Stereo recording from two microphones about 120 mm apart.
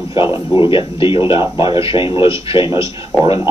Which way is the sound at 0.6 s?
45° left (ahead or behind).